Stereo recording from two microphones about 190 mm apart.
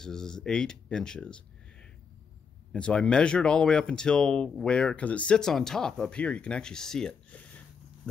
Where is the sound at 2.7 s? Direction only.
5° left (ahead or behind).